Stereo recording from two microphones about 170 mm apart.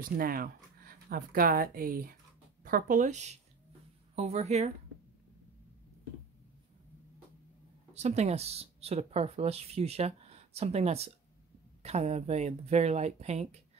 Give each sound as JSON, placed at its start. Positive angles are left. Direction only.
{"t": 0.0, "sound": "speech", "side_deg": -55}
{"t": 7.9, "sound": "speech", "side_deg": -40}